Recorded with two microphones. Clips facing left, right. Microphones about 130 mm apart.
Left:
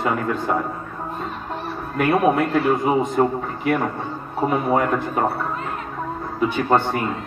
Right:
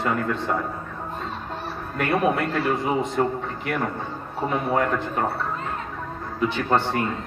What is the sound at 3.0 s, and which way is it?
Speech, 5° left (ahead or behind).